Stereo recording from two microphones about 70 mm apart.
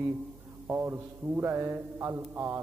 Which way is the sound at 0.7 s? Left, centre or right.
Right.